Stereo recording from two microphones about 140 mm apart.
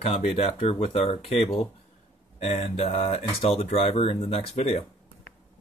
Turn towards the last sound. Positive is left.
turn(degrees=50)  # may be behind; listen again after turning